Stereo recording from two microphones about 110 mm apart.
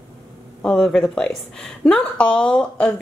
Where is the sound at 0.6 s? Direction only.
5° left (ahead or behind).